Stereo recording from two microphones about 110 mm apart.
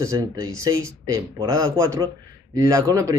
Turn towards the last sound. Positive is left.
turn(degrees=-35)  # may be behind; listen again after turning